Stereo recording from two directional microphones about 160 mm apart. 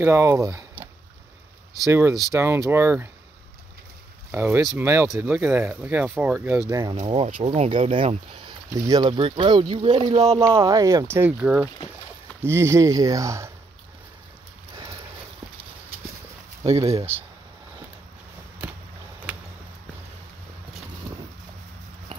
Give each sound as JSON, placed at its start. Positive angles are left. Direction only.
{"t": 0.0, "sound": "speech", "side_deg": -15}
{"t": 1.9, "sound": "speech", "side_deg": -15}
{"t": 4.3, "sound": "speech", "side_deg": -10}
{"t": 7.1, "sound": "speech", "side_deg": -35}
{"t": 8.7, "sound": "speech", "side_deg": -25}
{"t": 10.6, "sound": "speech", "side_deg": -20}
{"t": 16.6, "sound": "speech", "side_deg": -20}
{"t": 18.6, "sound": "a sound", "side_deg": -10}